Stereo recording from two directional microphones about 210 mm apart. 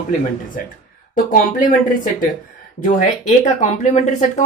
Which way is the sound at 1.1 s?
40° left (ahead or behind).